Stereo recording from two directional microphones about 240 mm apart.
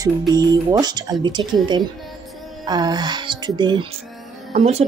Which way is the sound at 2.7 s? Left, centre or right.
Centre.